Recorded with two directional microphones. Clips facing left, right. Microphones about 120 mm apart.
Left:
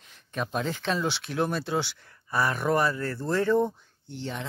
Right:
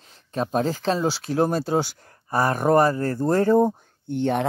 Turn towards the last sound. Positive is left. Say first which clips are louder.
# right 12 dB
turn(degrees=-60)  # may be behind; listen again after turning